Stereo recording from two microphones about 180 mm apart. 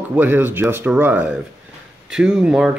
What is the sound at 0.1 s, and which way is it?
Speech, 10° right (ahead or behind).